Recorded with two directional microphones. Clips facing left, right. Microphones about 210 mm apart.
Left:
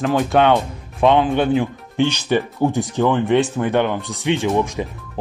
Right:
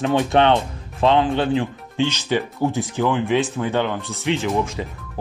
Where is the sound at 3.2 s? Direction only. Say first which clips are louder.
Left 3 dB; 70° left (ahead or behind).